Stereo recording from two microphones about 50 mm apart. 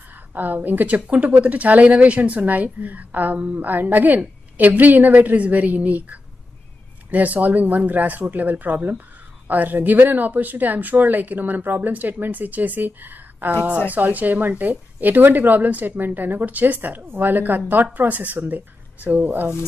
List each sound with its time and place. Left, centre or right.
0.3 s speech: right